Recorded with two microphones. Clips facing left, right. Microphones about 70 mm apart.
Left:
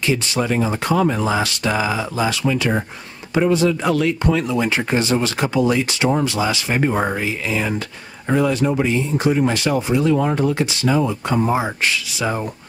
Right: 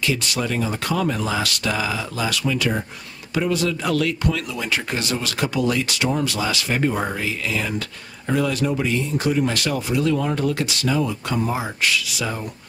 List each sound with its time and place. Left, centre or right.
0.0 s speech: left